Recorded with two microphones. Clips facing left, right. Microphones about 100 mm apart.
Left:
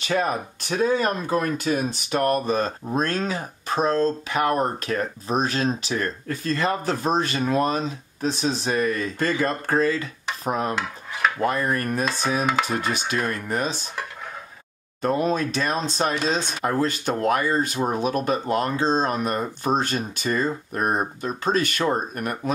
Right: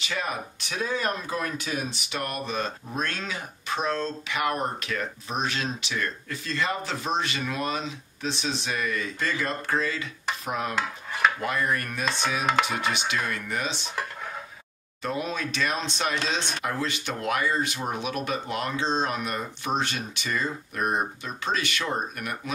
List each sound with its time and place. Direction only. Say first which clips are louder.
0.0 s speech: left 7 dB; 40° left (ahead or behind)
12.0 s stir: left 4 dB; centre (ahead or behind)
12.9 s speech: left 3 dB; 40° left (ahead or behind)
15.0 s speech: left 8 dB; 40° left (ahead or behind)